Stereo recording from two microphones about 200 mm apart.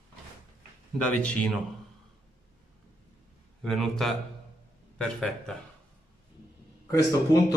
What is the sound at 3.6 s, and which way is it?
A man's voice, centre (ahead or behind).